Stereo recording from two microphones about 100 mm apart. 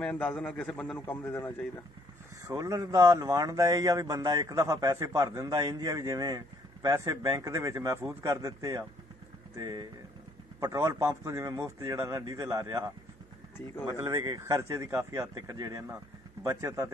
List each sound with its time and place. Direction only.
0.0 s a man's voice: 10° left (ahead or behind)
0.9 s a man's voice: 25° left (ahead or behind)
2.4 s a man's voice: 35° right (ahead or behind)
14.0 s a man's voice: 40° right (ahead or behind)
15.3 s a man's voice: 40° right (ahead or behind)